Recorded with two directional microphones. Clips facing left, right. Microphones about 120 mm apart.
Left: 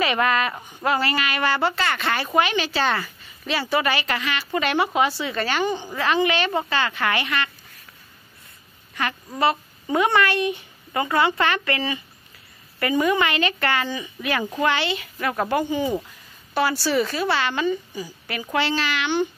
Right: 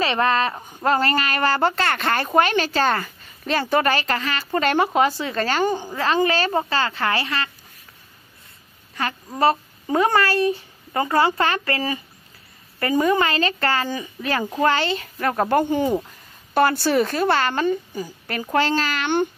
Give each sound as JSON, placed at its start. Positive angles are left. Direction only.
{"t": 0.0, "sound": "a woman's voice", "side_deg": -30}
{"t": 9.4, "sound": "a woman's voice", "side_deg": -35}